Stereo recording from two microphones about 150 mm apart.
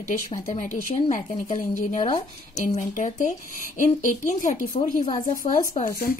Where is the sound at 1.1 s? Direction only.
55° left (ahead or behind).